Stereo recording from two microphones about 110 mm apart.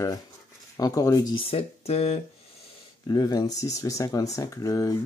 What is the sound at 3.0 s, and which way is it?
Speech, 40° left (ahead or behind).